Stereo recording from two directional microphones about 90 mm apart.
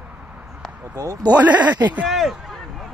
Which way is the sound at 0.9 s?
40° right (ahead or behind).